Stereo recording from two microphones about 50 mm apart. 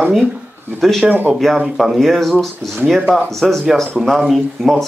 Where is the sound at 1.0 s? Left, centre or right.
Right.